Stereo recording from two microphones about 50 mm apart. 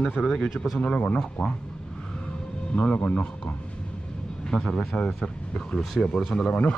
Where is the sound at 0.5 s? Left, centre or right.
Centre.